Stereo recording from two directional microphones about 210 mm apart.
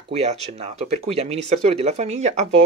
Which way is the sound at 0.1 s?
30° right (ahead or behind).